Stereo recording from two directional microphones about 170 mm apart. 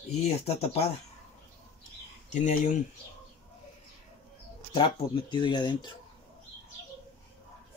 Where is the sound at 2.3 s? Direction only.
45° left (ahead or behind).